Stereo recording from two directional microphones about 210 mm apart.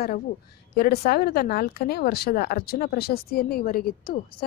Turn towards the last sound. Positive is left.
turn(degrees=45)  # may be behind; listen again after turning